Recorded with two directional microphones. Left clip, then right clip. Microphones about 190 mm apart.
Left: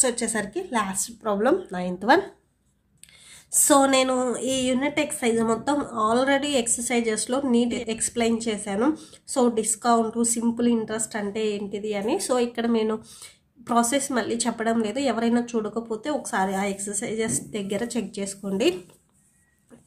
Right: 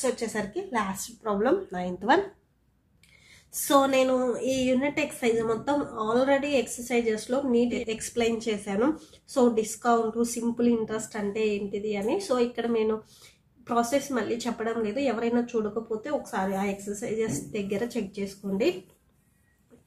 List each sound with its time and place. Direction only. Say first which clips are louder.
0.0 s a woman's voice: left 3 dB; 25° left (ahead or behind)
3.6 s a woman's voice: left 3 dB; 30° left (ahead or behind)